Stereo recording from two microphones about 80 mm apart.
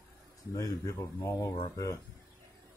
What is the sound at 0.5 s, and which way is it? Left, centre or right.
Speech, left.